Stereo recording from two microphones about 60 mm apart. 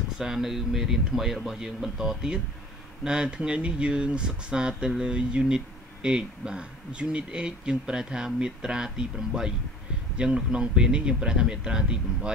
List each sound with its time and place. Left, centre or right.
0.2 s speech: centre